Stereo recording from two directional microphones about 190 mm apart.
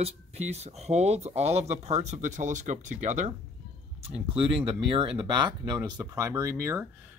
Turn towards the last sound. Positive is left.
turn(degrees=-15)  # may be behind; listen again after turning